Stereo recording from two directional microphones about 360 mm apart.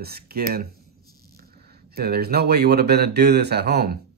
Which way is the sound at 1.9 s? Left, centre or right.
Right.